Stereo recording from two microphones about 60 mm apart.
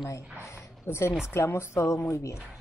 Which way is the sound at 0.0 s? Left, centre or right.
Left.